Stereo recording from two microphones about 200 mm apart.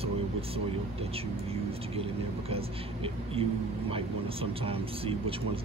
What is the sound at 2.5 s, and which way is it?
Speech, 30° right (ahead or behind).